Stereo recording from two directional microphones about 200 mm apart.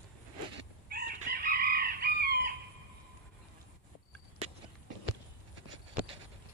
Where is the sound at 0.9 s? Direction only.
50° right (ahead or behind).